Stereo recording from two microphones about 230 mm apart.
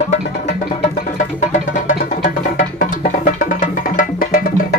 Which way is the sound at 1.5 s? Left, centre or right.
Left.